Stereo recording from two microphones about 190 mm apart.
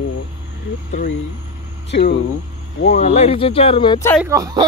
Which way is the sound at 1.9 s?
60° left (ahead or behind).